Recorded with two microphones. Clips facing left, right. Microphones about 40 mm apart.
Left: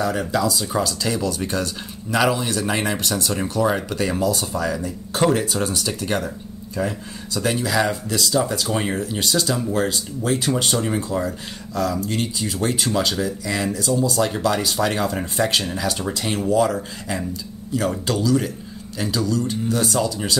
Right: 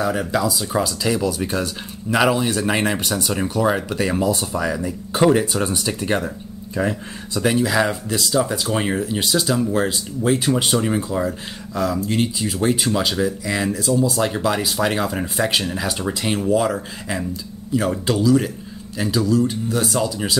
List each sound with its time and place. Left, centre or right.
0.0 s speech: centre
4.2 s speech: right
4.5 s speech: centre
6.7 s speech: right
7.3 s speech: centre